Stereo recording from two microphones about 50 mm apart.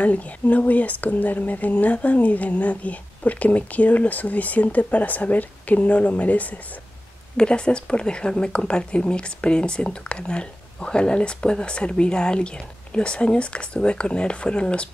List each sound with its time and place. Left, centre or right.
0.0 s speech: left
7.3 s a woman's voice: centre